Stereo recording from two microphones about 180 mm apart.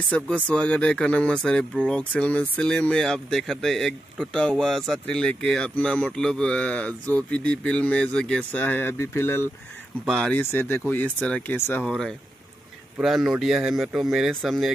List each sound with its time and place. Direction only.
0.1 s speech: 5° left (ahead or behind)